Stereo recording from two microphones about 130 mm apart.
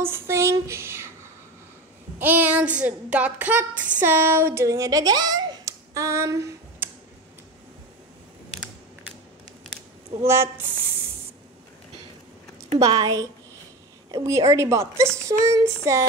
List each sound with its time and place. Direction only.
0.0 s a sound: 20° right (ahead or behind)
2.1 s speech: 15° right (ahead or behind)
10.2 s a woman's voice: 20° right (ahead or behind)
12.7 s a woman's voice: 30° right (ahead or behind)